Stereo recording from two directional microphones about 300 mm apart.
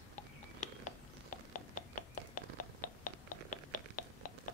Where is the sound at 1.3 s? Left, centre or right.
Left.